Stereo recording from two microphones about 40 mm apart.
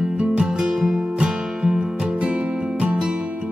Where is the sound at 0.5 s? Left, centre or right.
Centre.